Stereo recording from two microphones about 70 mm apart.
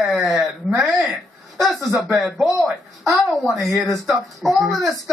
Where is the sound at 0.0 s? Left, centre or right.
Centre.